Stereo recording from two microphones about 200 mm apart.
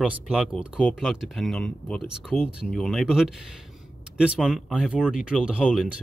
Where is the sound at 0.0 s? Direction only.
5° right (ahead or behind).